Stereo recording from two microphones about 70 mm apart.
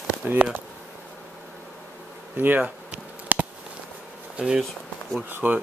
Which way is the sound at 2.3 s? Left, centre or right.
Right.